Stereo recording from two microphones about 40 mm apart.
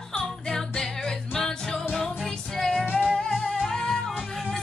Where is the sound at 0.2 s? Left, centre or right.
Centre.